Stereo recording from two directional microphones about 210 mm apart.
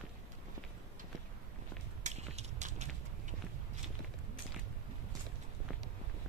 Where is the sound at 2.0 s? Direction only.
35° right (ahead or behind).